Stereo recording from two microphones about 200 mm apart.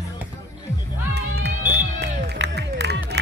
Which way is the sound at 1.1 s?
55° right (ahead or behind).